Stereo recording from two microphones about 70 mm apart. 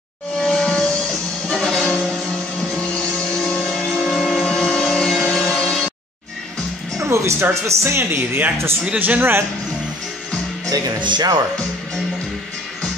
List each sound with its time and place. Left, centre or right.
0.4 s a sound: centre
1.5 s music: centre
3.3 s music: centre
3.9 s music: centre
4.5 s a sound: centre
5.6 s music: centre
7.0 s music: right
7.6 s speech: right
10.7 s speech: right